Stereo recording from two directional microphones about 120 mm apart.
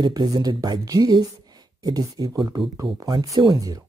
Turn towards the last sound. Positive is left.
turn(degrees=-30)  # may be behind; listen again after turning